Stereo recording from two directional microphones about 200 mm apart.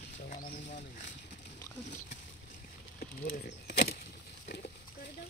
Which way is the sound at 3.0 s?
45° left (ahead or behind).